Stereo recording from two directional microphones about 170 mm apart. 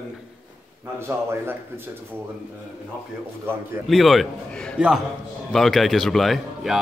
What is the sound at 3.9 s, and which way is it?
A man's voice, centre (ahead or behind).